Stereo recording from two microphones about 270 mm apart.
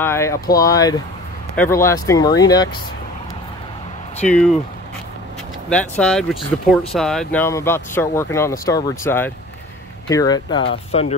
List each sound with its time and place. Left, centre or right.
0.0 s speech: centre
4.3 s speech: centre
5.7 s speech: centre; by 11.1 s left